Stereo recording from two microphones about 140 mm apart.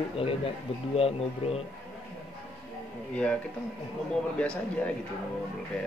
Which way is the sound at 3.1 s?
10° left (ahead or behind).